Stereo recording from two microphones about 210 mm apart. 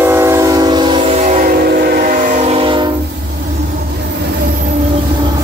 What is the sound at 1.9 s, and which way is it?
Train, 40° right (ahead or behind).